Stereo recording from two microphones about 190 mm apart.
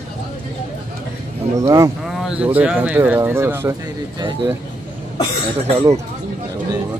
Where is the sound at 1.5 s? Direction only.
15° right (ahead or behind).